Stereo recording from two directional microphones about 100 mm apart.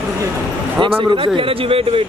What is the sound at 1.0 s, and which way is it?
A man's voice, 65° right (ahead or behind).